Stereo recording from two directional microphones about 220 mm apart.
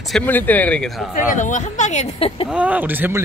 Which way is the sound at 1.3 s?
35° left (ahead or behind).